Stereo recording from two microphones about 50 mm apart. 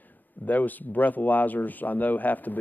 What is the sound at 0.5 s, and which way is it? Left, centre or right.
Speech, left.